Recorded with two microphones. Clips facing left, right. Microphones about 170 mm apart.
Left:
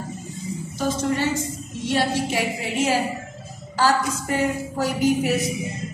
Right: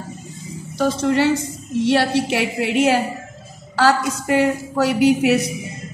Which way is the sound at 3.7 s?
75° right (ahead or behind).